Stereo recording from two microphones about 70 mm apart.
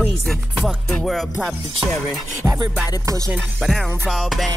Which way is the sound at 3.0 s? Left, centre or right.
Right.